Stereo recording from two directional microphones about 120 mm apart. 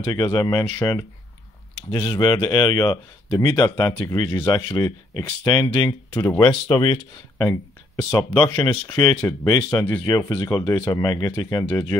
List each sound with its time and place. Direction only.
0.0 s speech: 35° left (ahead or behind)
1.9 s speech: 35° left (ahead or behind)
6.1 s speech: 15° left (ahead or behind)
6.4 s speech: 40° left (ahead or behind)
7.4 s speech: 25° left (ahead or behind)